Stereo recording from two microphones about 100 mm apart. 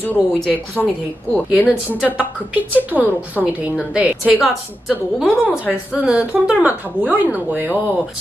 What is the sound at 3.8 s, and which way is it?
Speech, 10° right (ahead or behind).